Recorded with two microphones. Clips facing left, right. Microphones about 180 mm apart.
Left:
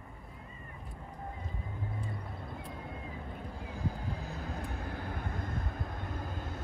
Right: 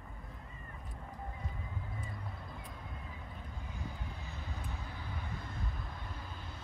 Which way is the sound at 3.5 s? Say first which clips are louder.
Left 8 dB; 35° left (ahead or behind).